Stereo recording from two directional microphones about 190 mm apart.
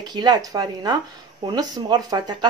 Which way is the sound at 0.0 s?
20° right (ahead or behind).